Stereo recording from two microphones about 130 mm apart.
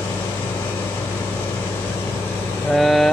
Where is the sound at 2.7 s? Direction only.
Centre (ahead or behind).